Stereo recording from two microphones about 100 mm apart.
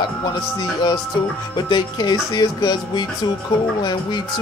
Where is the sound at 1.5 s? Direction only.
45° left (ahead or behind).